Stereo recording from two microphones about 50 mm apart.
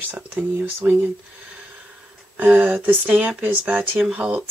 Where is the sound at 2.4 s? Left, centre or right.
Right.